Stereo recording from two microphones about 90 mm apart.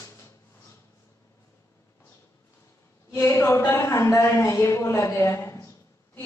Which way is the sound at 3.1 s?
30° left (ahead or behind).